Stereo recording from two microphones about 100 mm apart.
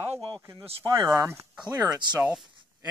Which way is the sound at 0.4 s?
30° right (ahead or behind).